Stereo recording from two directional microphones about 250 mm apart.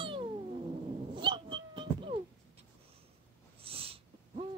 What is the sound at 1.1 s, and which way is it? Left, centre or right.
Dog, centre.